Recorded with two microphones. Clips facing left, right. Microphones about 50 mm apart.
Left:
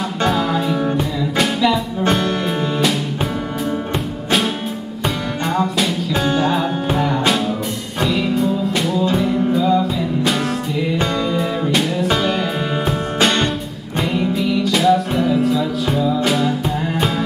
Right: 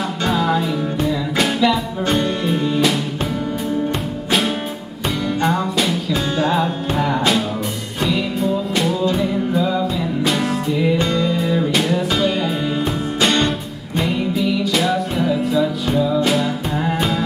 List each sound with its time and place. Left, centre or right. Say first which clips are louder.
0.3 s music: right 2 dB; centre
5.4 s music: left 1 dB; centre
11.0 s music: even; centre